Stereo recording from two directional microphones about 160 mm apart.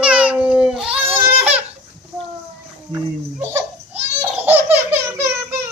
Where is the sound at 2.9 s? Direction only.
15° right (ahead or behind).